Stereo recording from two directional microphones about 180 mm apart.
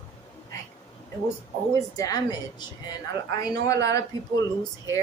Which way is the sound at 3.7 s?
20° left (ahead or behind).